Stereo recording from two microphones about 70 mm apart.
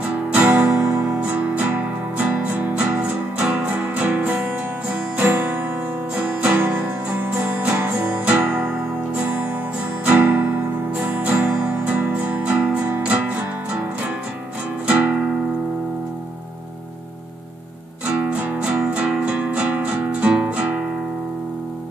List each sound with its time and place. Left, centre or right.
0.0 s music: centre
0.8 s music: right
6.1 s music: centre
6.5 s music: right
8.1 s music: centre
10.0 s music: right
18.0 s music: centre